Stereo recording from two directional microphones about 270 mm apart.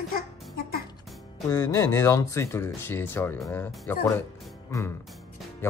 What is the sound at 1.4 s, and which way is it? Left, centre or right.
Speech, centre.